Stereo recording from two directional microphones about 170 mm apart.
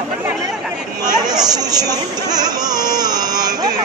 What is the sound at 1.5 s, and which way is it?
Speech, 25° right (ahead or behind).